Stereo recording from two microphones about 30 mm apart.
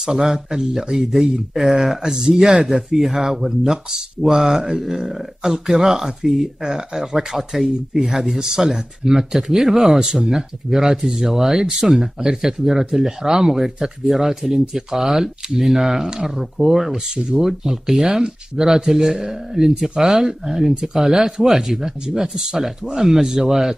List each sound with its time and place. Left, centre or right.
0.0 s speech: centre
17.5 s speech: centre